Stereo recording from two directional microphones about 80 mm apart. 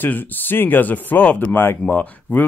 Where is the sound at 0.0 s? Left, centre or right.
Left.